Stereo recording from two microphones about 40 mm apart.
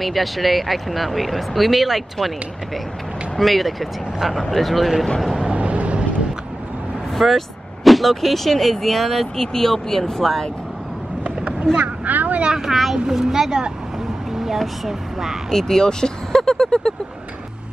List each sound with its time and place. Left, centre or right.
0.0 s speech: centre
3.3 s speech: centre
5.4 s vehicle: right
7.2 s speech: centre
11.7 s speech: centre
12.0 s vehicle: right
12.5 s a woman's voice: centre
14.9 s speech: centre
15.5 s speech: centre